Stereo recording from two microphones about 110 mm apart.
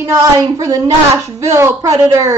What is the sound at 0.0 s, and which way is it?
A woman's voice, 30° right (ahead or behind).